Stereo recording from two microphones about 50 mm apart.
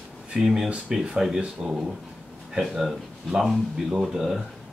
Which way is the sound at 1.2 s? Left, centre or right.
Centre.